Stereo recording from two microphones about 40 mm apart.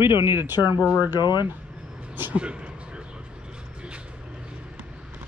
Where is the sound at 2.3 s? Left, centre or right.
Right.